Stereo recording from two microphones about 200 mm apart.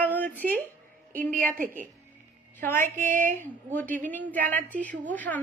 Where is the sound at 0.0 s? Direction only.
10° left (ahead or behind).